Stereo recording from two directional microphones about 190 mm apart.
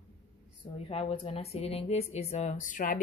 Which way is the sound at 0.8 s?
30° left (ahead or behind).